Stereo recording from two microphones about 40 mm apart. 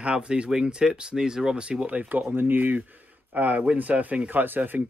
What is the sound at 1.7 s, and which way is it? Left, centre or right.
Speech, right.